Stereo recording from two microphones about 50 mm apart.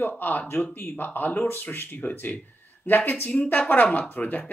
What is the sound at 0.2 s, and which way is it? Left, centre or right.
Speech, left.